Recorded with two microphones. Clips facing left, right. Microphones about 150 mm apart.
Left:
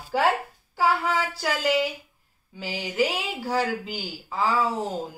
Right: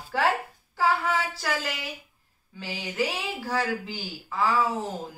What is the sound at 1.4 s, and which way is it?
A woman's voice, 20° left (ahead or behind).